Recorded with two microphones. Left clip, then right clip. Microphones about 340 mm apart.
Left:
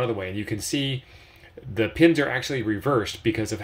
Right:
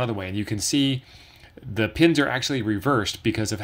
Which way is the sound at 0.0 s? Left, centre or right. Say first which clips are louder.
Left 1 dB; right.